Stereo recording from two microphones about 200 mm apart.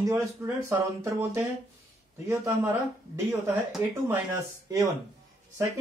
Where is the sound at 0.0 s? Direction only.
15° right (ahead or behind).